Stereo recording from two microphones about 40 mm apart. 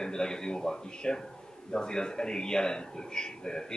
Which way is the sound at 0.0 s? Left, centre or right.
Centre.